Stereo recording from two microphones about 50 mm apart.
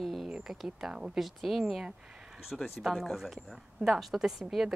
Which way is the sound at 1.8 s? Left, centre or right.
Centre.